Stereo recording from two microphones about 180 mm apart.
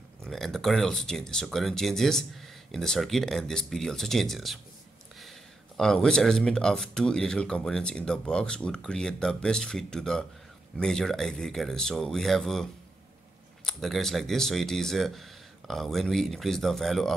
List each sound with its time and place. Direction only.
0.2 s speech: centre (ahead or behind)
5.8 s speech: 5° left (ahead or behind)
13.7 s speech: centre (ahead or behind)